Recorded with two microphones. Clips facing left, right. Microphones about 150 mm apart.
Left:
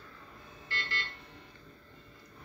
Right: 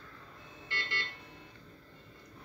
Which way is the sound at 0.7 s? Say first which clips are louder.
Left 1 dB; 15° right (ahead or behind).